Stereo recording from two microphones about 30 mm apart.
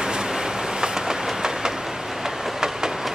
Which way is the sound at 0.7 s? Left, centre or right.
Right.